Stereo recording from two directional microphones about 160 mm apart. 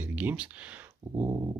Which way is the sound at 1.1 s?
20° right (ahead or behind).